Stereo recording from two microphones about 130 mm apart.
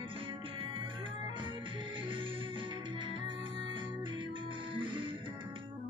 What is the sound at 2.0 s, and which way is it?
Music, 40° right (ahead or behind).